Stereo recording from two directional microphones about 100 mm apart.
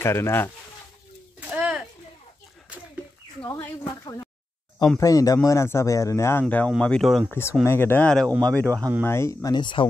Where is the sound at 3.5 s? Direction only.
25° left (ahead or behind).